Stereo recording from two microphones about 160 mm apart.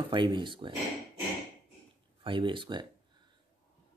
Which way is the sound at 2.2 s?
30° right (ahead or behind).